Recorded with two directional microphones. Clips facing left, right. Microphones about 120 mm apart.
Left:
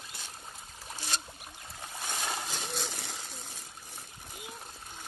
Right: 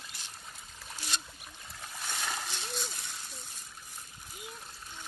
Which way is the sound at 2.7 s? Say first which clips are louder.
Left 2 dB; 90° left.